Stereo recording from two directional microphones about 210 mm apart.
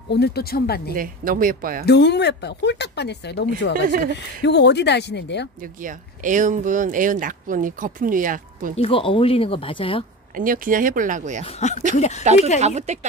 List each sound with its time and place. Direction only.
0.1 s a woman's voice: 50° left (ahead or behind)
0.9 s speech: 40° right (ahead or behind)
1.9 s a woman's voice: 55° left (ahead or behind)
5.6 s speech: 40° right (ahead or behind)
8.7 s speech: 25° left (ahead or behind)
10.3 s speech: 40° right (ahead or behind)
11.4 s speech: 35° left (ahead or behind)
12.5 s speech: 30° right (ahead or behind)